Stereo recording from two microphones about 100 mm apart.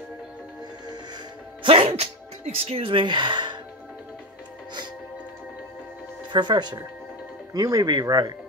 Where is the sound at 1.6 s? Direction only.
65° right (ahead or behind); by 3.5 s 50° right (ahead or behind).